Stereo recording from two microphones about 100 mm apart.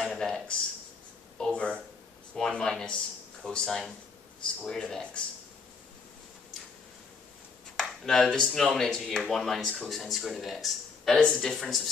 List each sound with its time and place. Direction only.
0.0 s speech: 5° left (ahead or behind)
7.7 s speech: 5° left (ahead or behind)